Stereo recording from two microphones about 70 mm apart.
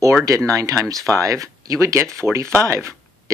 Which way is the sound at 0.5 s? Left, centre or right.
Right.